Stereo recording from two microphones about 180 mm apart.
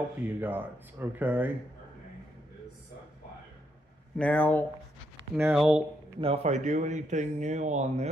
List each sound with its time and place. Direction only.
0.2 s speech: 10° right (ahead or behind)
4.2 s speech: 10° left (ahead or behind)
5.3 s speech: 5° right (ahead or behind)
6.2 s speech: 35° right (ahead or behind)